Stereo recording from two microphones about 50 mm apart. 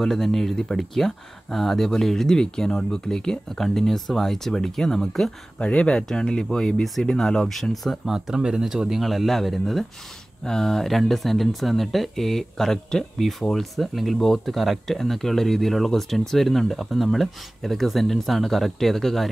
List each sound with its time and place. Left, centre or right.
0.0 s speech: centre
5.6 s speech: left; by 8.1 s centre
8.1 s speech: centre
10.4 s speech: centre